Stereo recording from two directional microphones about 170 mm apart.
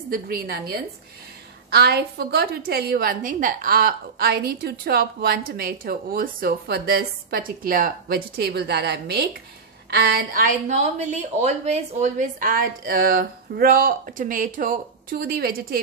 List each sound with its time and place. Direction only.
0.1 s a woman's voice: 60° right (ahead or behind)